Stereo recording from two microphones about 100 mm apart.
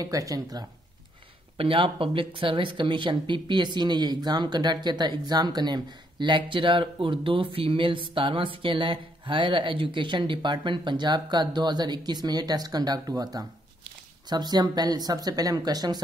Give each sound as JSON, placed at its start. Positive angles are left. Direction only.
{"t": 0.0, "sound": "speech", "side_deg": -35}
{"t": 1.6, "sound": "speech", "side_deg": -65}